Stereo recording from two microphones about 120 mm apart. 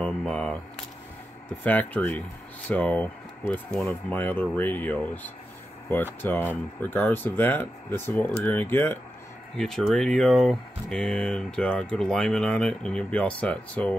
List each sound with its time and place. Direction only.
0.0 s speech: 10° left (ahead or behind)
1.6 s speech: 15° left (ahead or behind)
9.6 s speech: centre (ahead or behind)